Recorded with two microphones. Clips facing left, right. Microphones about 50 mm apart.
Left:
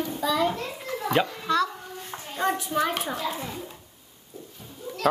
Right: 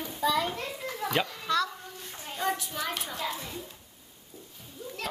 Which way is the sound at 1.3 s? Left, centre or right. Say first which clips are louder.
Left 4 dB; centre.